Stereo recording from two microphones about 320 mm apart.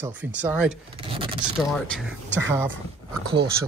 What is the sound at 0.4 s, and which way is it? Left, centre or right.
Speech, centre.